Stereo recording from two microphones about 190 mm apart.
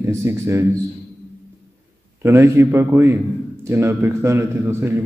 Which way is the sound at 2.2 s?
10° right (ahead or behind).